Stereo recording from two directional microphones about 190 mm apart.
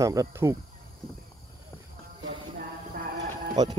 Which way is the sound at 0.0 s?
15° right (ahead or behind).